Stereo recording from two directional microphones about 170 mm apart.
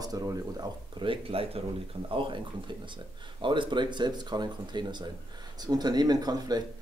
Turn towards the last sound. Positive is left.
turn(degrees=-25)  # may be behind; listen again after turning